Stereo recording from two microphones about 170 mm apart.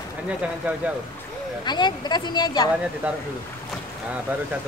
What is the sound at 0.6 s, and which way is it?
Speech, 10° right (ahead or behind).